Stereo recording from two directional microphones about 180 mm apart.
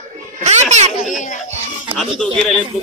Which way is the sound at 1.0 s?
45° left (ahead or behind).